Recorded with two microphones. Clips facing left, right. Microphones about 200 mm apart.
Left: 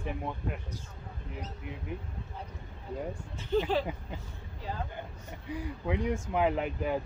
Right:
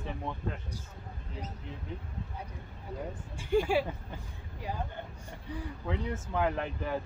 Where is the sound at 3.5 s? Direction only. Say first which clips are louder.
Right 1 dB; 10° right (ahead or behind).